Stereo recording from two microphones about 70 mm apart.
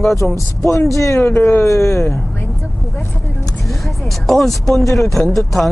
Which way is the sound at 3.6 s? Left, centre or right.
Centre.